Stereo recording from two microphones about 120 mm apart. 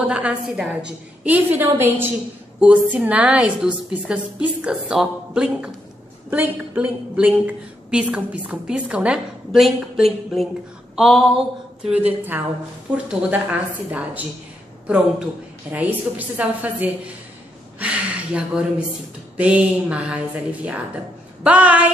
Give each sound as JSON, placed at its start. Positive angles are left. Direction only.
{"t": 0.0, "sound": "a woman's voice", "side_deg": -10}
{"t": 11.0, "sound": "a sound", "side_deg": 0}
{"t": 12.1, "sound": "a woman's voice", "side_deg": -15}
{"t": 15.7, "sound": "a woman's voice", "side_deg": -15}